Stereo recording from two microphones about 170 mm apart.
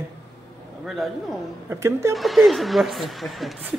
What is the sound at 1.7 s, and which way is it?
Speech, 15° right (ahead or behind).